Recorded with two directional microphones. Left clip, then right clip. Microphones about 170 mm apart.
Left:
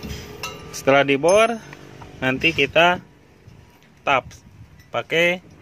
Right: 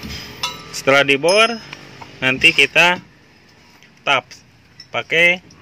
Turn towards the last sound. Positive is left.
turn(degrees=10)  # may be behind; listen again after turning